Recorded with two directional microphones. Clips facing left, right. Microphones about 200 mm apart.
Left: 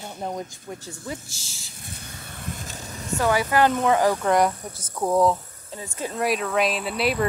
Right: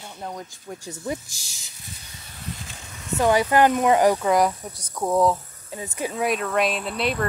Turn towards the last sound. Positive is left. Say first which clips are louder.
# left 1 dB
turn(degrees=5)  # may be behind; listen again after turning